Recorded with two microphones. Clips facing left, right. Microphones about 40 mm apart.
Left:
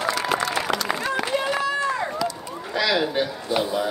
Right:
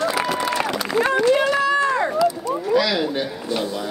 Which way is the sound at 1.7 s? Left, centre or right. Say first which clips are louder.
Right 5 dB; right.